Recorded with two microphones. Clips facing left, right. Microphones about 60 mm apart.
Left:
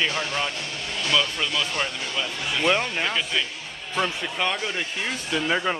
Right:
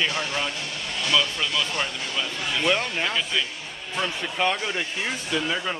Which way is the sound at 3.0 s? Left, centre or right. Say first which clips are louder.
Even; centre.